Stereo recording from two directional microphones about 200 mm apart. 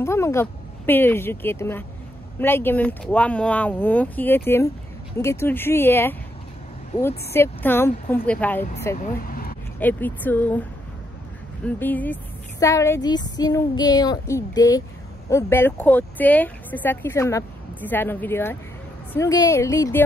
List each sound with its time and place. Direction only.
0.0 s speech: 15° left (ahead or behind)
9.0 s vehicle: 45° left (ahead or behind)
9.8 s speech: 10° left (ahead or behind)
11.6 s speech: 10° left (ahead or behind)